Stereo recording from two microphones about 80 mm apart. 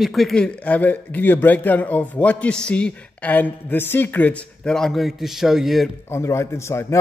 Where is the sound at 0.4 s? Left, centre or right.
Left.